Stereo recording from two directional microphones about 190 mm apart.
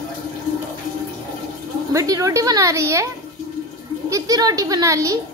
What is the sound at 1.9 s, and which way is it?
A child's voice, 20° right (ahead or behind).